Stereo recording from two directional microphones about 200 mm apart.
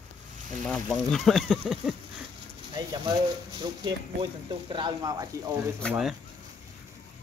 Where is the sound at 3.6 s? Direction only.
25° right (ahead or behind).